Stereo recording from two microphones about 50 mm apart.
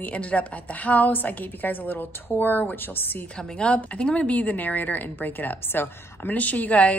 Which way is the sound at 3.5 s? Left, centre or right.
Centre.